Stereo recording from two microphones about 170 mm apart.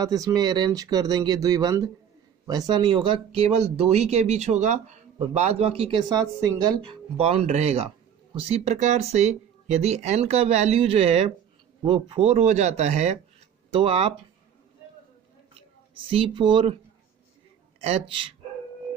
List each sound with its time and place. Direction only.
0.0 s speech: 20° right (ahead or behind)
7.2 s speech: 35° right (ahead or behind)
16.1 s speech: 30° right (ahead or behind)
17.8 s speech: 35° right (ahead or behind)